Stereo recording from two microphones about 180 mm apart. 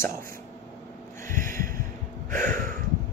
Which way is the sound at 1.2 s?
50° right (ahead or behind).